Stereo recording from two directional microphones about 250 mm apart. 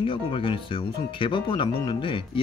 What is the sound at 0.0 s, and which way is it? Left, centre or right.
Speech, left.